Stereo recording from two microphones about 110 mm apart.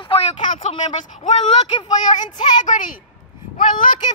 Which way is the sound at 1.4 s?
65° left (ahead or behind).